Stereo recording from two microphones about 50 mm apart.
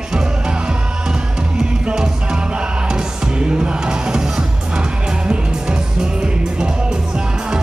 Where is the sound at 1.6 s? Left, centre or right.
Centre.